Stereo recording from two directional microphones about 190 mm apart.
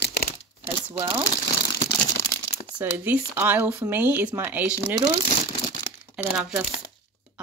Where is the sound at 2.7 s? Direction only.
10° right (ahead or behind).